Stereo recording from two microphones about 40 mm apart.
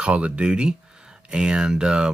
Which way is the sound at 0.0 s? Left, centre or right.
Right.